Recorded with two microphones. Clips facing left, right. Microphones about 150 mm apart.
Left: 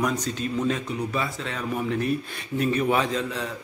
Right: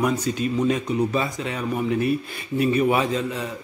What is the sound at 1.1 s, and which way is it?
Speech, 25° right (ahead or behind).